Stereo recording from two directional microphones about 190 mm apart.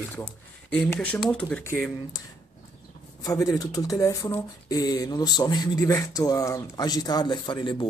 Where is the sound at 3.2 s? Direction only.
20° left (ahead or behind).